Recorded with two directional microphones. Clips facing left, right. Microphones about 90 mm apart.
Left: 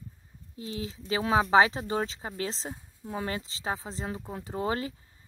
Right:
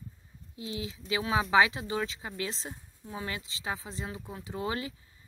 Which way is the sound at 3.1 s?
50° left (ahead or behind).